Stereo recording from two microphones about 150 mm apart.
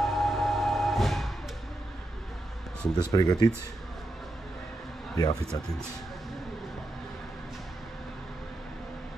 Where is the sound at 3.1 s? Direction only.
25° left (ahead or behind).